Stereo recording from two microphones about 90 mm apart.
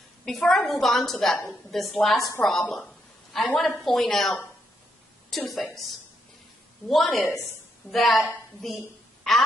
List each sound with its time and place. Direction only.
0.2 s a woman's voice: 5° left (ahead or behind)
2.4 s a sound: 5° left (ahead or behind)
3.5 s a woman's voice: centre (ahead or behind)
5.5 s a woman's voice: centre (ahead or behind)
6.9 s a woman's voice: centre (ahead or behind)
7.2 s a woman's voice: 25° left (ahead or behind)
7.9 s a woman's voice: centre (ahead or behind)